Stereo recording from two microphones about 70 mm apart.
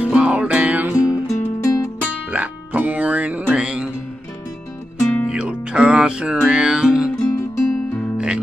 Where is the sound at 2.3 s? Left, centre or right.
Right.